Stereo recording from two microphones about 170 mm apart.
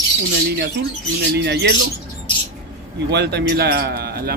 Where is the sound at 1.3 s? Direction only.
80° right.